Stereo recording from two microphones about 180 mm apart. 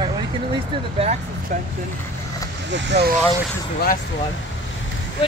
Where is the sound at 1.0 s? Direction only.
40° right (ahead or behind).